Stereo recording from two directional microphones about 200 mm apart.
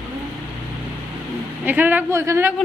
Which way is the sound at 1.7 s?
10° right (ahead or behind).